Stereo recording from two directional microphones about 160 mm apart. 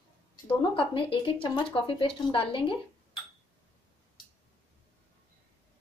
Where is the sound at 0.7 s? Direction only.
35° left (ahead or behind).